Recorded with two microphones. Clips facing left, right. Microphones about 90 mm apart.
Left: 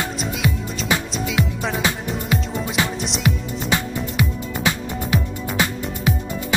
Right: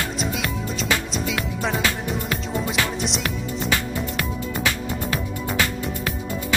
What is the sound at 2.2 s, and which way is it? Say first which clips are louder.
Music: left 2 dB; 15° left (ahead or behind).